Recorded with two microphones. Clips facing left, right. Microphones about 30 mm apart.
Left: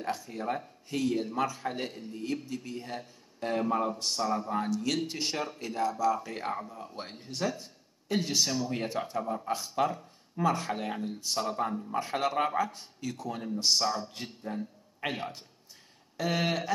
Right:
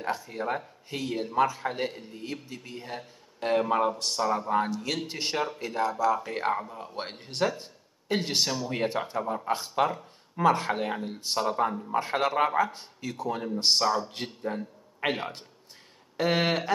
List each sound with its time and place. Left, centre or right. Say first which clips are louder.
0.0 s speech: right 3 dB; centre
3.3 s a man's voice: right 4 dB; right
4.2 s speech: right 5 dB; right
7.1 s speech: right 6 dB; right
7.4 s a sound: right 5 dB; right
8.6 s a man's voice: right 4 dB; right
16.2 s a man's voice: right 4 dB; right